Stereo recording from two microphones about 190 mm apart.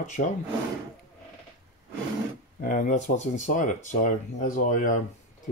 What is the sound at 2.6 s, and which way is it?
Speech, 45° left (ahead or behind).